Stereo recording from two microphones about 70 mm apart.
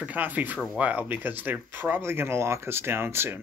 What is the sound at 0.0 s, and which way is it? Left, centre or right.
Speech, right.